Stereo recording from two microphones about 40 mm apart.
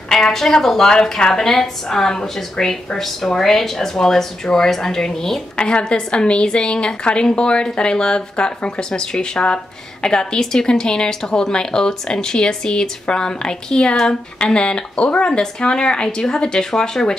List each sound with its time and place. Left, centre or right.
0.1 s a woman's voice: centre
5.6 s a woman's voice: left